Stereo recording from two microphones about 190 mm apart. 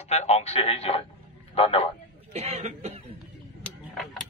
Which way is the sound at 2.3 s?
35° right (ahead or behind).